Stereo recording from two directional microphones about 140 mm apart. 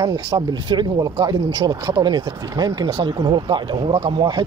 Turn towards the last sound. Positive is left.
turn(degrees=-30)  # may be behind; listen again after turning